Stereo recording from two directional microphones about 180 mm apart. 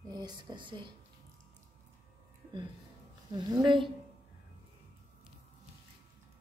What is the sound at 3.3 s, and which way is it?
Speech, 25° right (ahead or behind).